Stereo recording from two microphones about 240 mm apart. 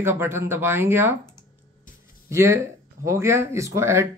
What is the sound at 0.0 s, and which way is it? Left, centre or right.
Speech, centre.